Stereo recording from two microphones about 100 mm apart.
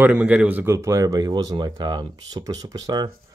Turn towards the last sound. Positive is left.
turn(degrees=-45)  # may be behind; listen again after turning